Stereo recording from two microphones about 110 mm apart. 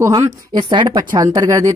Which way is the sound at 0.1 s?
40° right (ahead or behind).